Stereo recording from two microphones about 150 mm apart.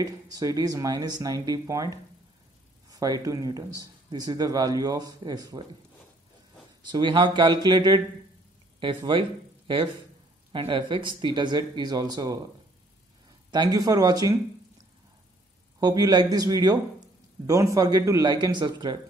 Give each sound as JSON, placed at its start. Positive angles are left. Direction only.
{"t": 0.0, "sound": "speech", "side_deg": -25}
{"t": 2.9, "sound": "speech", "side_deg": -25}
{"t": 6.9, "sound": "speech", "side_deg": -30}
{"t": 10.5, "sound": "speech", "side_deg": -35}
{"t": 13.5, "sound": "speech", "side_deg": -25}
{"t": 15.8, "sound": "speech", "side_deg": -25}